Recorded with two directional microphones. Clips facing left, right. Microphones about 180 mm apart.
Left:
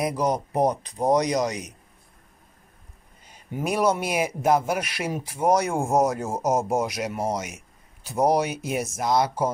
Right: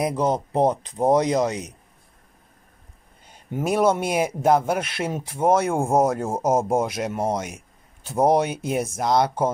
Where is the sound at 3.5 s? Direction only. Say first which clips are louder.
Right 3 dB; 25° right (ahead or behind).